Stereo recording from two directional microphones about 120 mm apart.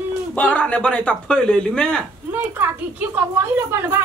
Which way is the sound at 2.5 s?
15° right (ahead or behind).